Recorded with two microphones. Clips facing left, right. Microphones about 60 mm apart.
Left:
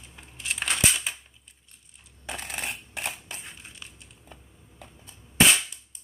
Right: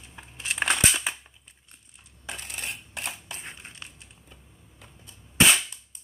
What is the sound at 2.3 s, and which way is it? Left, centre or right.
Coin, left.